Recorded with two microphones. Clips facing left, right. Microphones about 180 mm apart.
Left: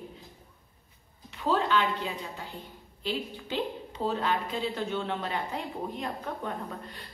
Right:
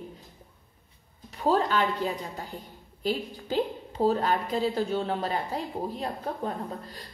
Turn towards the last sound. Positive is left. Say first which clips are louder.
# right 2 dB
turn(degrees=-35)  # may be behind; listen again after turning